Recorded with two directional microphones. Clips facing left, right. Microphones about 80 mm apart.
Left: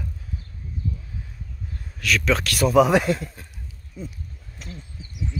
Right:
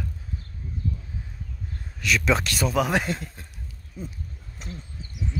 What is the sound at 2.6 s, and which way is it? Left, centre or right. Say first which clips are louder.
Speech: left 7 dB; centre.